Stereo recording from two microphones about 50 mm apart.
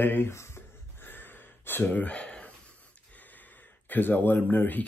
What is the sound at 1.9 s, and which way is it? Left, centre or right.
Speech, left.